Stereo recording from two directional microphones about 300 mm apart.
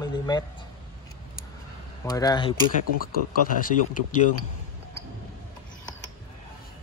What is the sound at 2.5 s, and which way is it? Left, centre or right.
Speech, left.